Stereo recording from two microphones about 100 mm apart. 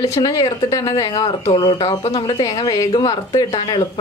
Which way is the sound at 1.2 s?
55° left (ahead or behind).